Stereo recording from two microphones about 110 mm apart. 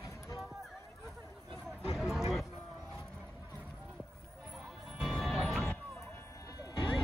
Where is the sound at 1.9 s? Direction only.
Centre (ahead or behind).